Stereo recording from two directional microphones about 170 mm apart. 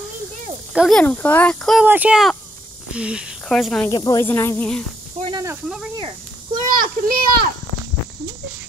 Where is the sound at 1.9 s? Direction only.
10° right (ahead or behind).